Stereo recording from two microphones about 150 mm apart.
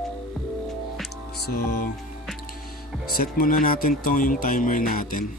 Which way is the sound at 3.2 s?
65° left (ahead or behind).